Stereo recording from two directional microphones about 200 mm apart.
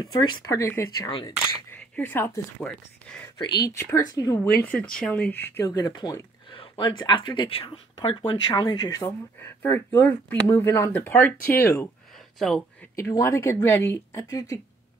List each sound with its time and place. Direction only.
0.0 s speech: 20° left (ahead or behind)
4.6 s speech: 5° left (ahead or behind)
11.3 s speech: 50° left (ahead or behind)
11.6 s speech: 15° left (ahead or behind)
12.4 s speech: centre (ahead or behind)
12.9 s speech: 15° left (ahead or behind)